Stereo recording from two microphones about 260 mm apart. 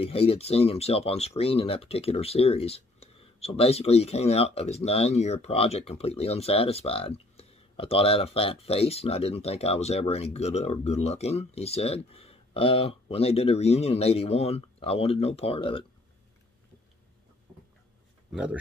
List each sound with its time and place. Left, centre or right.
0.0 s speech: left
18.3 s speech: centre